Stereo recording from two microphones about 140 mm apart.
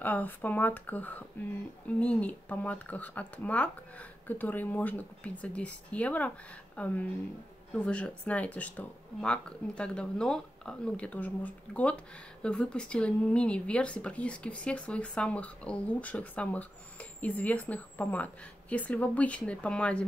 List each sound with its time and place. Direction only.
0.0 s speech: 10° left (ahead or behind)